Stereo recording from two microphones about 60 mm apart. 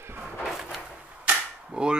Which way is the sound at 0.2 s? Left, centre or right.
Centre.